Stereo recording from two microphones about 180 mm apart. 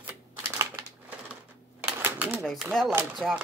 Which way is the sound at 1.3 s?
10° right (ahead or behind).